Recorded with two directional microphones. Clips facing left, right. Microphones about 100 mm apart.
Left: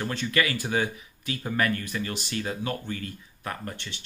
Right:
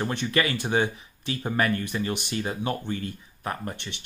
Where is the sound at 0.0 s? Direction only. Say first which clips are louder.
Right 1 dB; 20° right (ahead or behind).